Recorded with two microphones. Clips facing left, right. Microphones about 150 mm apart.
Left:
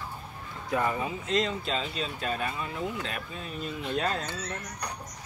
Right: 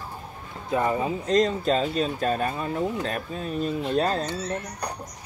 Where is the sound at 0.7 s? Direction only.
25° right (ahead or behind).